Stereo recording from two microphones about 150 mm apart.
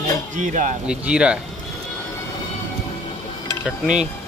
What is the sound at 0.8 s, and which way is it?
Speech, 5° right (ahead or behind).